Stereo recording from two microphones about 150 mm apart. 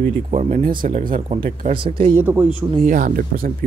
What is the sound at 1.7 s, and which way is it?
Speech, 35° right (ahead or behind).